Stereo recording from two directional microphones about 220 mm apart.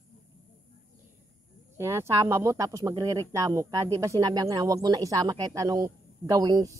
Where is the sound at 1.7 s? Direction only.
10° right (ahead or behind).